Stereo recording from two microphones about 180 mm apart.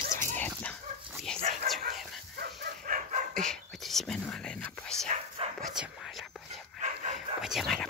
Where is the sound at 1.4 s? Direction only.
40° right (ahead or behind).